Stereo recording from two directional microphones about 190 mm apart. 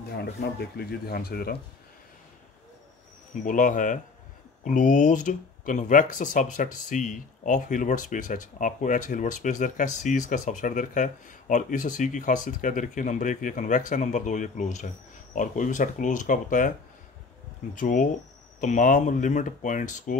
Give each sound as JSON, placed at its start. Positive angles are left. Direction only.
{"t": 0.2, "sound": "speech", "side_deg": 60}
{"t": 3.4, "sound": "speech", "side_deg": 45}
{"t": 17.7, "sound": "speech", "side_deg": 45}